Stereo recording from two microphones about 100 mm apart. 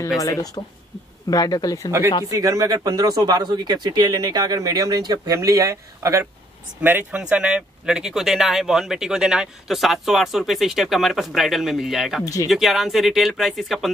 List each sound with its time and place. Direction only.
0.2 s speech: 35° left (ahead or behind)
2.3 s speech: 35° right (ahead or behind)
6.8 s speech: 20° right (ahead or behind); by 13.8 s centre (ahead or behind)